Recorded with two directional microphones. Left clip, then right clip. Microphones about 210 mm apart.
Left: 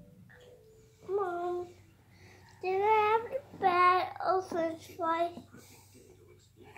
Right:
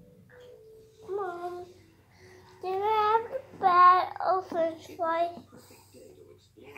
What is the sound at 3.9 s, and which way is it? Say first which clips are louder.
Child singing: right 6 dB; 30° left (ahead or behind).